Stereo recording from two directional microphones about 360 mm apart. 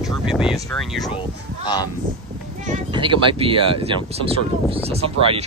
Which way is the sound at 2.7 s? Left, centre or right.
Centre.